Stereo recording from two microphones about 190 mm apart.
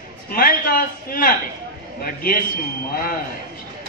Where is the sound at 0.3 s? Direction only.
50° left (ahead or behind).